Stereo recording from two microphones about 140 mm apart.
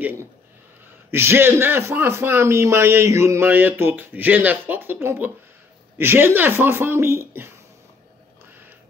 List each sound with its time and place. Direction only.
1.1 s a man's voice: 15° right (ahead or behind)